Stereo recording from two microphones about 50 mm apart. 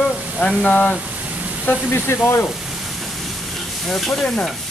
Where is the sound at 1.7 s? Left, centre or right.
Left.